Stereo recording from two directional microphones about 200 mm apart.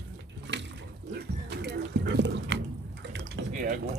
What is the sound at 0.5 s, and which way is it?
Water, 60° right (ahead or behind).